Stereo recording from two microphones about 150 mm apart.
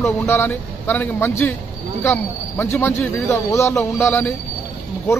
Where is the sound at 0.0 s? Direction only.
15° left (ahead or behind).